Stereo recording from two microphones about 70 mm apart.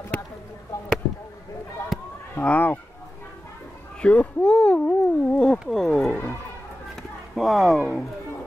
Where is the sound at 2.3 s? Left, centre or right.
Left.